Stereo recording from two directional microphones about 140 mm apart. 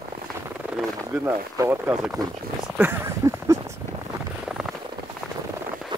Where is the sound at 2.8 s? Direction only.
20° right (ahead or behind).